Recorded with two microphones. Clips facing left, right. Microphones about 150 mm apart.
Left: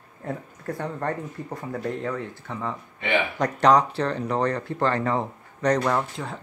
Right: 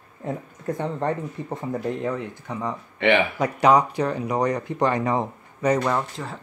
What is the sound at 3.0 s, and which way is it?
Speech, 75° right (ahead or behind).